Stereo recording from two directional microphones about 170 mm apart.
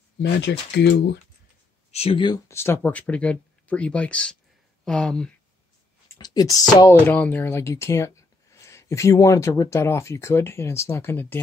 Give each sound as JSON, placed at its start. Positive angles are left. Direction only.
{"t": 0.2, "sound": "speech", "side_deg": 85}
{"t": 1.9, "sound": "speech", "side_deg": 35}
{"t": 6.1, "sound": "a sound", "side_deg": 20}
{"t": 6.7, "sound": "speech", "side_deg": 20}
{"t": 7.1, "sound": "speech", "side_deg": 10}